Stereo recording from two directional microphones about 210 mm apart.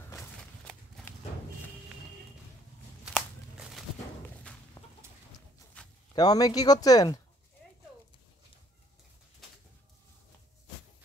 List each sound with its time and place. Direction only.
3.5 s a sound: 5° right (ahead or behind)
4.8 s chicken: 15° left (ahead or behind)
5.8 s zipper: 5° left (ahead or behind)
6.1 s speech: 20° left (ahead or behind)